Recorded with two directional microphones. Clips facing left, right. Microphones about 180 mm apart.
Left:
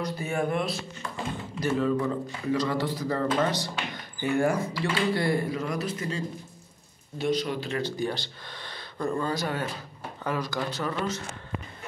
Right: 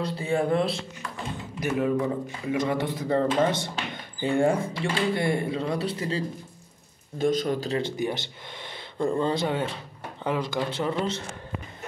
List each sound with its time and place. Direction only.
0.0 s speech: 30° right (ahead or behind)
1.6 s speech: 15° right (ahead or behind); by 6.2 s 30° right (ahead or behind)
7.2 s speech: 45° right (ahead or behind)
7.7 s speech: 20° right (ahead or behind)